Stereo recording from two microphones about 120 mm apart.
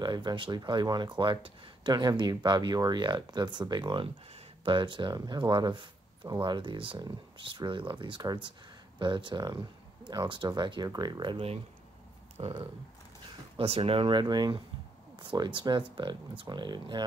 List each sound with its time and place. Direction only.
0.0 s speech: 40° right (ahead or behind)
13.6 s speech: 50° right (ahead or behind)